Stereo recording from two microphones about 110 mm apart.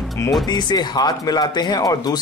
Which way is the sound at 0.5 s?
40° left (ahead or behind).